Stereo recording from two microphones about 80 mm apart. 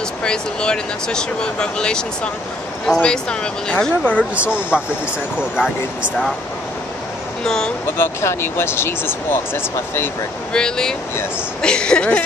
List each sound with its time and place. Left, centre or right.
0.2 s speech: centre
4.4 s speech: centre
7.4 s speech: centre
8.0 s speech: left
10.5 s speech: centre